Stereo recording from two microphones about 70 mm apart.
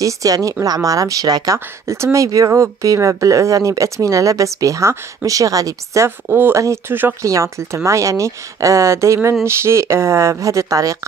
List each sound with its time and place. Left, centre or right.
0.0 s speech: right
6.0 s speech: right
7.2 s speech: right